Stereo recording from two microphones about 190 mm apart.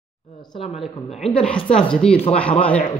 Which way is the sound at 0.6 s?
Centre (ahead or behind).